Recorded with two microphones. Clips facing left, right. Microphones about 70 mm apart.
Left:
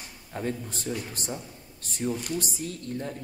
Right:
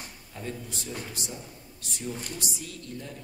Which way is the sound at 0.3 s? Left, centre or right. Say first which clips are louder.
Left 6 dB; left.